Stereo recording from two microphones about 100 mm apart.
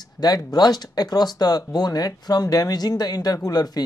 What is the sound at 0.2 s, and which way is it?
Speech, 40° left (ahead or behind).